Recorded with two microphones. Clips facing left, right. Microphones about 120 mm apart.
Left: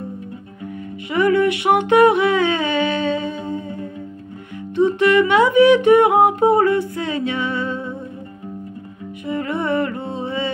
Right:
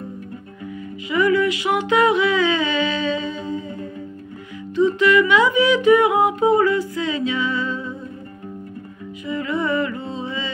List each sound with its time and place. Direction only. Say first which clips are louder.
1.1 s humming: left 2 dB; 60° left (ahead or behind)
4.7 s music: left 1 dB; 65° left (ahead or behind)
6.0 s humming: left 3 dB; 60° left (ahead or behind)
9.2 s music: left 1 dB; 60° left (ahead or behind)